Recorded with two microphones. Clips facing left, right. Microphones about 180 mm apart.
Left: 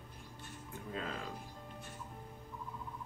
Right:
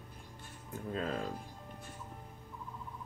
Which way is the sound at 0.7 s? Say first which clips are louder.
Right 6 dB; 40° right (ahead or behind).